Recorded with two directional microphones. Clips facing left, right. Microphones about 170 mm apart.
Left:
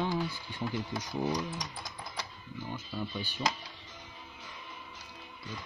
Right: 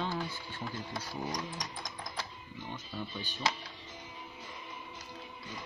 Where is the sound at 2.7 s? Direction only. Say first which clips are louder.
Left 4 dB; 10° left (ahead or behind).